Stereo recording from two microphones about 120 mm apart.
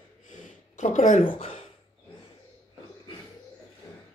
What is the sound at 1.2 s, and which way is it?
Speech, 50° left (ahead or behind).